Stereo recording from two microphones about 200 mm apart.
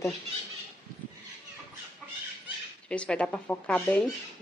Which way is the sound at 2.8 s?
5° left (ahead or behind).